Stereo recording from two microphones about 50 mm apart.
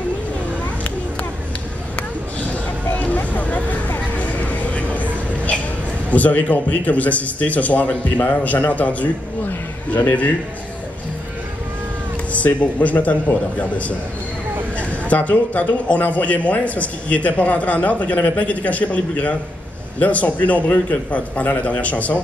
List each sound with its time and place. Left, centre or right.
2.0 s a sound: left
4.2 s vehicle: left
6.0 s a man's voice: left
12.3 s a man's voice: left